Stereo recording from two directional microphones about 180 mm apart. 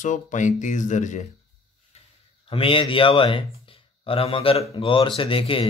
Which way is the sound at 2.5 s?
30° left (ahead or behind).